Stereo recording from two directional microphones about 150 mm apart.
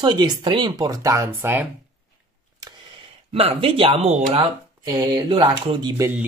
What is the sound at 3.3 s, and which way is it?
Speech, 40° right (ahead or behind).